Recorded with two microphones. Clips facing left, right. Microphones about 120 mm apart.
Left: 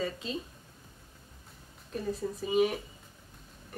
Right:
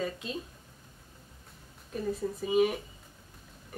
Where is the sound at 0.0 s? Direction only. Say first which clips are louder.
Even; 5° right (ahead or behind).